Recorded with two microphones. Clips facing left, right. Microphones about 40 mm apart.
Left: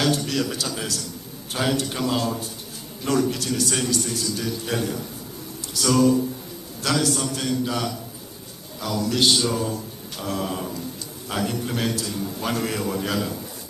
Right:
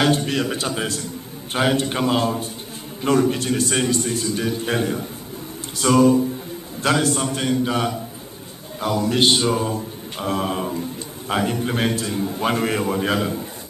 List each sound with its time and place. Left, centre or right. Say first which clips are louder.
0.0 s speech: right 3 dB; right